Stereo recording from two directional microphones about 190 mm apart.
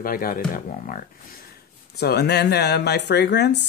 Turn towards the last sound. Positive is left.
turn(degrees=60)  # may be behind; listen again after turning